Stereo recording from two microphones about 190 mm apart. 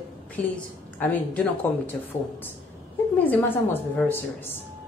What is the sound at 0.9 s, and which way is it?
Speech, 10° left (ahead or behind).